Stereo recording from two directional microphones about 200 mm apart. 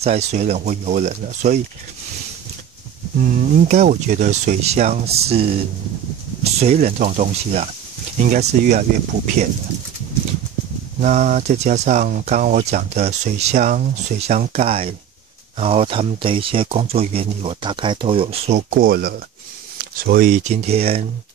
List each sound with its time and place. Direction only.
0.0 s speech: 30° right (ahead or behind)
3.5 s speech: 35° right (ahead or behind)
11.0 s speech: 40° right (ahead or behind)
18.7 s speech: 45° right (ahead or behind); by 21.1 s 30° right (ahead or behind)